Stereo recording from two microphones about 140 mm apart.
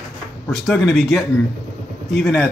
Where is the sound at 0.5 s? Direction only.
Centre (ahead or behind).